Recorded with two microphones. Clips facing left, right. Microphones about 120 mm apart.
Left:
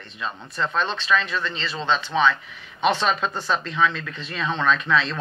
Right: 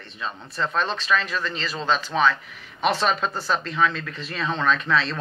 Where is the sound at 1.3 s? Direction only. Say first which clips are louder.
Left 1 dB; 5° right (ahead or behind).